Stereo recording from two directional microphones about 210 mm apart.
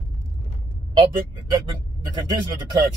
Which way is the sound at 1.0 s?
20° right (ahead or behind).